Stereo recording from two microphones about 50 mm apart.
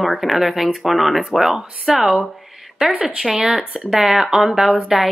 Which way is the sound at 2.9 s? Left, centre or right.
Right.